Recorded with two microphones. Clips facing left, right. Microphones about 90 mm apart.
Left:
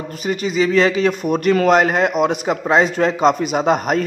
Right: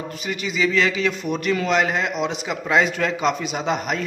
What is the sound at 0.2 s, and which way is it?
A man's voice, 40° left (ahead or behind).